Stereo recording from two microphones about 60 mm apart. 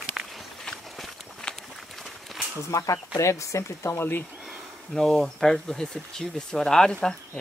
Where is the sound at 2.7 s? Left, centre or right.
Left.